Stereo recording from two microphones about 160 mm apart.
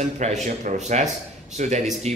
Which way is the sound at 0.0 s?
50° right (ahead or behind).